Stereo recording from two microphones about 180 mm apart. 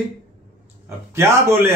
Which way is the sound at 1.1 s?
15° right (ahead or behind).